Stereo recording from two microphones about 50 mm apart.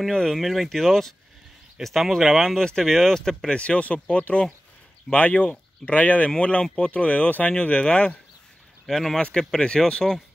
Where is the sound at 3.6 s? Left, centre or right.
Left.